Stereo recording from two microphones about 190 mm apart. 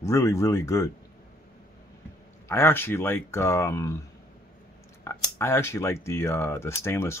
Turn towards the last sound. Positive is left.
turn(degrees=15)  # may be behind; listen again after turning